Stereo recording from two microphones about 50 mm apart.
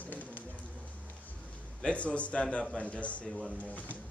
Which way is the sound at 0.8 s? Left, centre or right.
Left.